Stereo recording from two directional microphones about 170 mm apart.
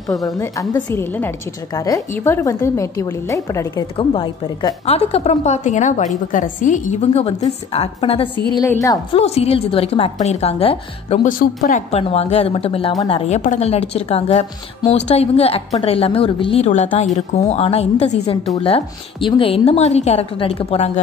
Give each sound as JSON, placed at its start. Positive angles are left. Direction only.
{"t": 0.4, "sound": "a woman's voice", "side_deg": 15}
{"t": 11.2, "sound": "a woman's voice", "side_deg": 50}